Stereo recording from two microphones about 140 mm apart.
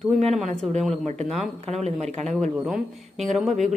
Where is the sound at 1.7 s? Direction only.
50° right (ahead or behind).